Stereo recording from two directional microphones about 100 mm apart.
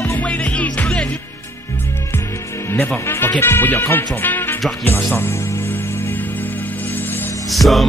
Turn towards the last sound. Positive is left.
turn(degrees=0)  # may be behind; listen again after turning